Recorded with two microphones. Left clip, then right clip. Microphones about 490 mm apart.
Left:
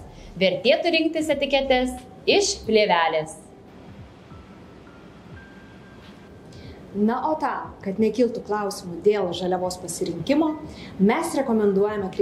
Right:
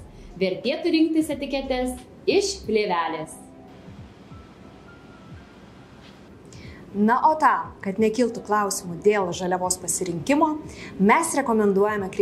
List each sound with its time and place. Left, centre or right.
0.4 s a woman's voice: left
7.1 s a woman's voice: right